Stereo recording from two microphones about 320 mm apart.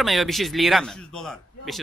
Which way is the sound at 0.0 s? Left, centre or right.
Centre.